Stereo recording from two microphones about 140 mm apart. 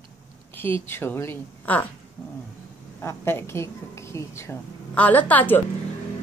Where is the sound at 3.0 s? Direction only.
15° left (ahead or behind).